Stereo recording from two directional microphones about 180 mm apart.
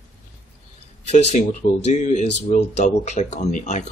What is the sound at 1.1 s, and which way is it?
Speech, 40° left (ahead or behind).